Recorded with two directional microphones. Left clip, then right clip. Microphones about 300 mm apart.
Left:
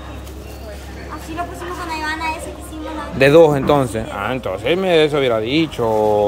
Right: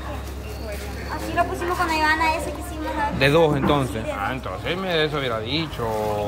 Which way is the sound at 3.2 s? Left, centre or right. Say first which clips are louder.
Left 9 dB; centre.